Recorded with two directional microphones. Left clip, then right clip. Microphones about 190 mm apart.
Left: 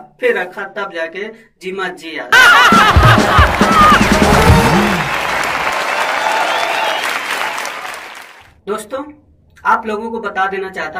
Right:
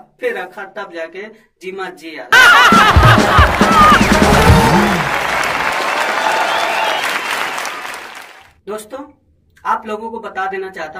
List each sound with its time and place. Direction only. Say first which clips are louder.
0.2 s speech: left 5 dB; 15° right (ahead or behind)
2.2 s music: even; centre (ahead or behind)
9.8 s speech: left 3 dB; 15° right (ahead or behind)